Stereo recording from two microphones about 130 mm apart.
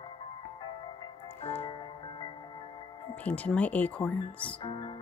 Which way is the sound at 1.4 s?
50° left (ahead or behind).